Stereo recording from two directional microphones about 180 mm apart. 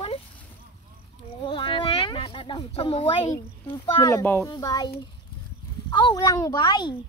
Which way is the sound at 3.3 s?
15° left (ahead or behind).